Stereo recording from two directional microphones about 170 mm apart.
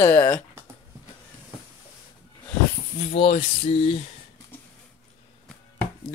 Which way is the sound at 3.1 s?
35° left (ahead or behind).